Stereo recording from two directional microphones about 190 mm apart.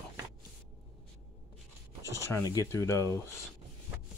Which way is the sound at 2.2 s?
15° left (ahead or behind).